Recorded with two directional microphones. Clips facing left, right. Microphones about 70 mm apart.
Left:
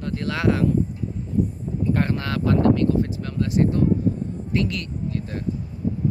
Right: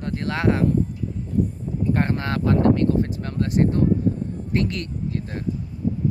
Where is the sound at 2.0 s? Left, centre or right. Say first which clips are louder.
Right 1 dB; right.